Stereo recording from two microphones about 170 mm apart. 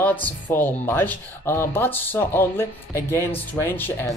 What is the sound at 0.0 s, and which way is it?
Speech, 10° left (ahead or behind).